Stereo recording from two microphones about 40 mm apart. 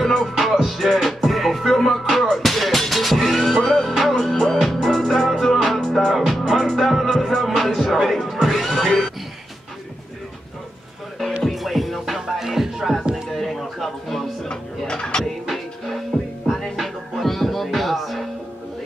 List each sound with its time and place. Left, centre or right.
0.0 s music: centre
11.5 s music: centre
13.1 s music: centre
14.5 s dishes: left
15.5 s music: centre